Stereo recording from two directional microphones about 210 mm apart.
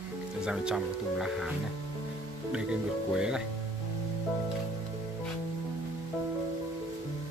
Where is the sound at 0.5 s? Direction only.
5° right (ahead or behind).